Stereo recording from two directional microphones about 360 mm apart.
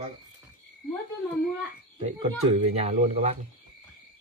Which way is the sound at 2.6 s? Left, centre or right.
Centre.